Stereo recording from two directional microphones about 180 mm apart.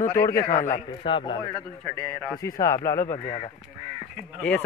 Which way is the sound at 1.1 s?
25° left (ahead or behind).